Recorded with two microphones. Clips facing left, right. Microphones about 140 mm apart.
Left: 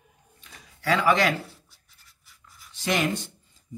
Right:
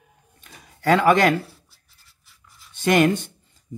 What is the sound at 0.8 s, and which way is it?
Speech, 50° right (ahead or behind).